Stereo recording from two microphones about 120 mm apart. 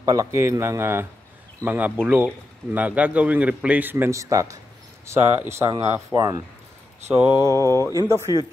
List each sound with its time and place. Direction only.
0.0 s a man's voice: 25° right (ahead or behind)
7.1 s a man's voice: 10° right (ahead or behind)
7.3 s speech: 25° right (ahead or behind)